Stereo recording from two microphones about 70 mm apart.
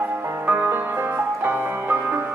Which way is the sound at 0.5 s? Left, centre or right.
Right.